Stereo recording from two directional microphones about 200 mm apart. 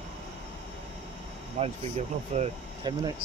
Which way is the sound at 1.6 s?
30° right (ahead or behind).